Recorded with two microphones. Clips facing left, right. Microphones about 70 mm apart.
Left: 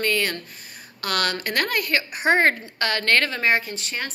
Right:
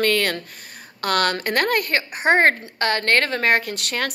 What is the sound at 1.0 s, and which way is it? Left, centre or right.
A woman's voice, right.